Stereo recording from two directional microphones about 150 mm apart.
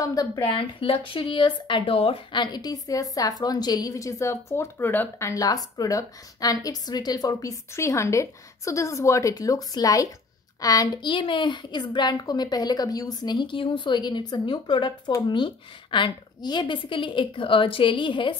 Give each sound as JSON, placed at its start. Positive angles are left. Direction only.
{"t": 0.0, "sound": "speech", "side_deg": 25}
{"t": 0.4, "sound": "speech", "side_deg": 35}
{"t": 5.3, "sound": "a woman's voice", "side_deg": 25}